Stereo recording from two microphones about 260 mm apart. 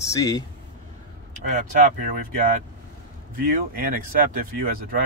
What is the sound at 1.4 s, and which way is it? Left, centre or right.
Speech, right.